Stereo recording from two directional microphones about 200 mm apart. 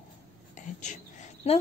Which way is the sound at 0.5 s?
35° left (ahead or behind).